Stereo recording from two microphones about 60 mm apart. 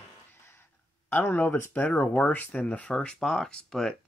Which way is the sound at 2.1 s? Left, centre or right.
Left.